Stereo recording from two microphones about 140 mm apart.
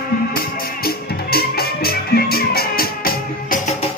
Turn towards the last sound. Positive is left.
turn(degrees=80)